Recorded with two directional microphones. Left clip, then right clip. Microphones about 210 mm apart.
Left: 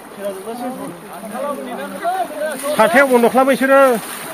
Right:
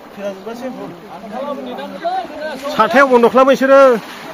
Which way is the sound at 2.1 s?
50° right (ahead or behind).